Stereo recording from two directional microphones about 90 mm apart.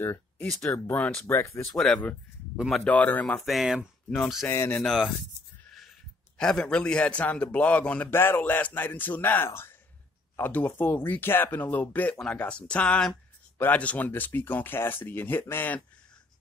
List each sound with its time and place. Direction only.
0.0 s a man's voice: 25° left (ahead or behind)
1.2 s speech: 30° left (ahead or behind)
1.7 s speech: 5° left (ahead or behind)
2.5 s speech: 10° right (ahead or behind)
2.8 s a man's voice: 15° left (ahead or behind)
3.3 s speech: centre (ahead or behind)
6.3 s a man's voice: 10° left (ahead or behind)
8.1 s a man's voice: 25° left (ahead or behind)